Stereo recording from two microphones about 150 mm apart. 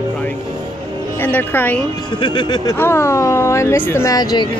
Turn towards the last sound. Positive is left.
turn(degrees=25)  # may be behind; listen again after turning